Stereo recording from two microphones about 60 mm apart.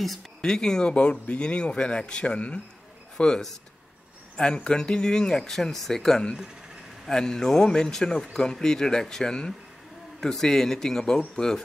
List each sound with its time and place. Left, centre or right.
0.4 s speech: centre
4.4 s speech: centre